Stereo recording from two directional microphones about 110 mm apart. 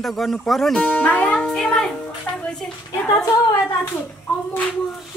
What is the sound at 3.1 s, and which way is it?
Speech, 30° left (ahead or behind).